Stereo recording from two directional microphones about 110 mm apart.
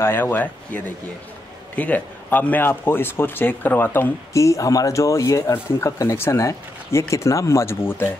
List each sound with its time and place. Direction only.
0.0 s a man's voice: 20° left (ahead or behind)